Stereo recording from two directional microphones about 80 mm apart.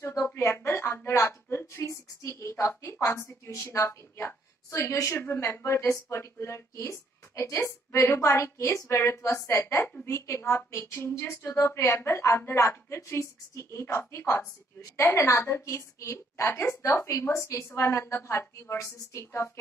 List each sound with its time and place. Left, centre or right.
0.0 s a woman's voice: left
5.2 s a woman's voice: left